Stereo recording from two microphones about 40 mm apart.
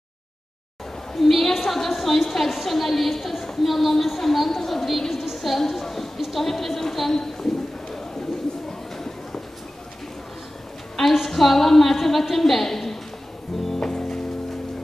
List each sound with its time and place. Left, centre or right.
1.1 s a woman's voice: centre
8.9 s a sound: centre
11.0 s a woman's voice: centre
13.7 s music: centre